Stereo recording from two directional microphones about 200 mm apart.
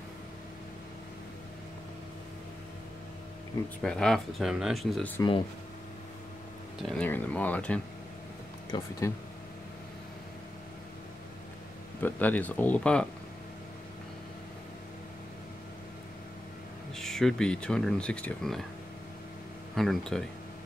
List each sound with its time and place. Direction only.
3.8 s speech: 5° left (ahead or behind)
6.8 s speech: 5° left (ahead or behind)
8.7 s speech: 20° left (ahead or behind)
12.0 s speech: 10° left (ahead or behind)
16.9 s speech: centre (ahead or behind)
19.7 s speech: centre (ahead or behind)